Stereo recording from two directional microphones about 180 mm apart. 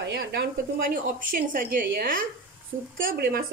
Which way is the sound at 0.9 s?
50° right (ahead or behind).